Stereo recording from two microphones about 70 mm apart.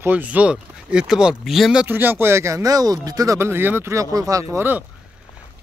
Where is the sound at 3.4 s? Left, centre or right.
Right.